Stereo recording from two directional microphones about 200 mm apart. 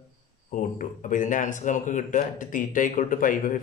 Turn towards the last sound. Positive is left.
turn(degrees=40)  # may be behind; listen again after turning